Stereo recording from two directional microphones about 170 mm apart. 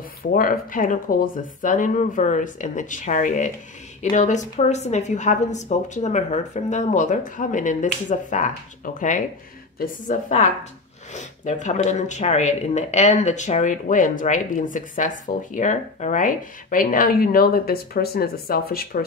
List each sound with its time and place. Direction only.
0.2 s speech: 60° left (ahead or behind)